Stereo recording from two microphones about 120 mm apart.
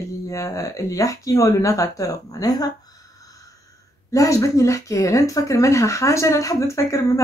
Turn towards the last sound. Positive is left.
turn(degrees=25)  # may be behind; listen again after turning